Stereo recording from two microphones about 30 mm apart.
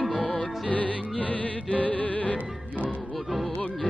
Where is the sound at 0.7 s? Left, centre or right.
Left.